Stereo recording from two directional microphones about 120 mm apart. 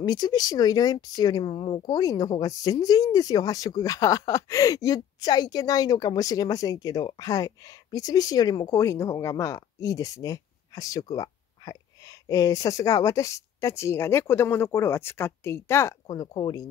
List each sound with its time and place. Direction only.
0.0 s speech: 35° left (ahead or behind)
16.1 s speech: 35° left (ahead or behind)